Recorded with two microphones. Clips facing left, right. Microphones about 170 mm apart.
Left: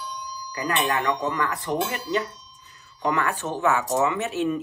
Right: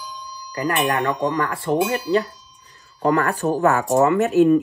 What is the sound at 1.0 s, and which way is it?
Speech, 30° right (ahead or behind).